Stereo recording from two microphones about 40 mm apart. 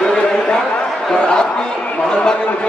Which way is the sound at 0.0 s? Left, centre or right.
Centre.